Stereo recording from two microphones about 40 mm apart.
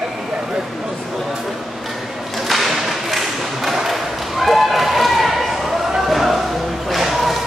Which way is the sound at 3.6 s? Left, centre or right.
Centre.